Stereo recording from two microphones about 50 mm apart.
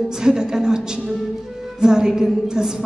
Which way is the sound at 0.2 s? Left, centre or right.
Centre.